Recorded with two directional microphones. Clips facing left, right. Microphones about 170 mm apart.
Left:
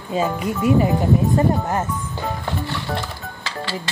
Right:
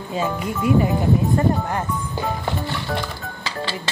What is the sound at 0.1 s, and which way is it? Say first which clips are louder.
Speech: left 3 dB; 20° left (ahead or behind).